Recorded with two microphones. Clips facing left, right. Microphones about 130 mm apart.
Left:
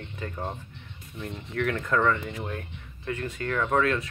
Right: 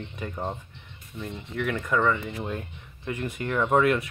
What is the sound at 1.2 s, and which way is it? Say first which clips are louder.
Speech: left 1 dB; 5° right (ahead or behind).